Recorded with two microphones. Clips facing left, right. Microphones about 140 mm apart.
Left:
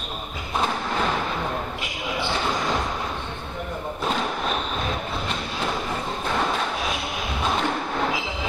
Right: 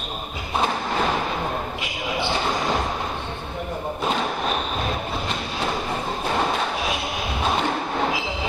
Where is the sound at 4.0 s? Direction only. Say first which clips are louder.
Right 1 dB; 10° right (ahead or behind).